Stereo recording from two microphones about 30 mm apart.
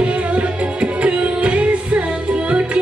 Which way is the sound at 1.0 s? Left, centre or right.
Right.